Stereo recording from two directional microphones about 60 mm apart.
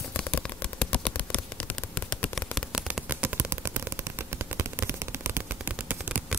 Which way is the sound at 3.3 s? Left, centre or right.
Right.